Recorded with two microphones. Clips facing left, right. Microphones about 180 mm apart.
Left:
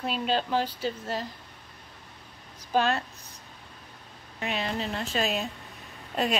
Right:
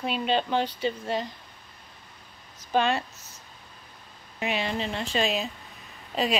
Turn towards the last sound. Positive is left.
turn(degrees=0)  # may be behind; listen again after turning